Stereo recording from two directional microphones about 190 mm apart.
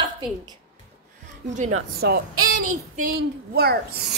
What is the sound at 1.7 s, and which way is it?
Speech, 55° right (ahead or behind).